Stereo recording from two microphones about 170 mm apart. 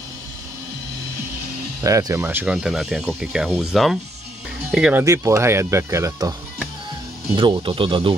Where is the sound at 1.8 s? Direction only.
20° right (ahead or behind); by 5.0 s 5° right (ahead or behind).